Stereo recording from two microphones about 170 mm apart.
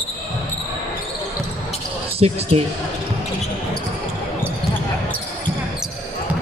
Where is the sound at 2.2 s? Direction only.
35° right (ahead or behind).